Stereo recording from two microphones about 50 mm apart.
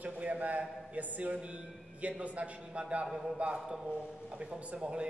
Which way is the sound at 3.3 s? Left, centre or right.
Right.